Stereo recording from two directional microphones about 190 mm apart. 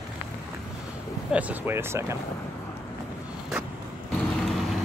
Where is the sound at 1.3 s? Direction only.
10° right (ahead or behind).